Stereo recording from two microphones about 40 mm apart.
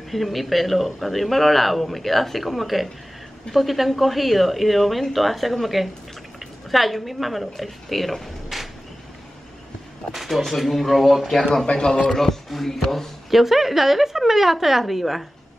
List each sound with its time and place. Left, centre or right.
0.1 s a woman's voice: centre
10.1 s a woman's voice: centre
11.6 s a man's voice: left
12.1 s a woman's voice: centre